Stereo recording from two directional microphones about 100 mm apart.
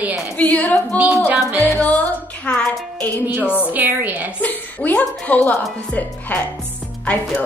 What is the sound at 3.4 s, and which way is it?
Speech, 20° left (ahead or behind).